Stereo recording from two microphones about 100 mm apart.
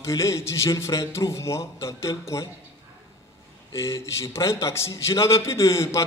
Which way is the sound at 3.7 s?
30° left (ahead or behind).